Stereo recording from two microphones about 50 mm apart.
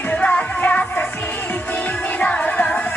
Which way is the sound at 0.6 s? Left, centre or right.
Left.